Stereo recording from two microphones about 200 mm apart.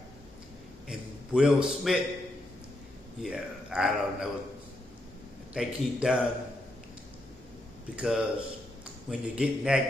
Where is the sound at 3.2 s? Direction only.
5° right (ahead or behind).